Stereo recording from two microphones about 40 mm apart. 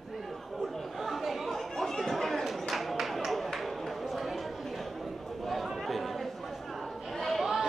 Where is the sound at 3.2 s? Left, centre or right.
Centre.